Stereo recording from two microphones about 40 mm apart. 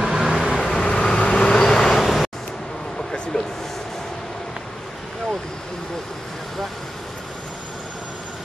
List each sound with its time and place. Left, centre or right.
0.0 s vehicle: centre
0.6 s vehicle: centre
2.0 s vehicle: centre
3.3 s vehicle: centre